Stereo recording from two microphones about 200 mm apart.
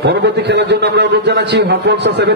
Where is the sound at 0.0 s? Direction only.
60° right (ahead or behind).